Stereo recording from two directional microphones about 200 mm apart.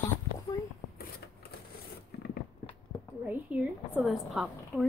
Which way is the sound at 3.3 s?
10° right (ahead or behind).